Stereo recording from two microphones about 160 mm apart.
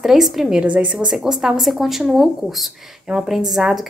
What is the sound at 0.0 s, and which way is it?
A woman's voice, centre (ahead or behind).